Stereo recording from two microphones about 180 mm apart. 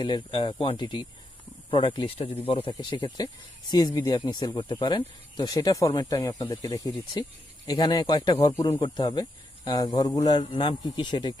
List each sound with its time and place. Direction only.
0.0 s speech: 25° left (ahead or behind)